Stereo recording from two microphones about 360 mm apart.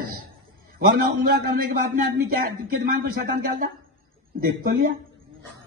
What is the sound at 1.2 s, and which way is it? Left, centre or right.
A woman's voice, right.